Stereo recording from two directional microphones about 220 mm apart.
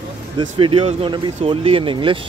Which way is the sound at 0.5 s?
25° right (ahead or behind).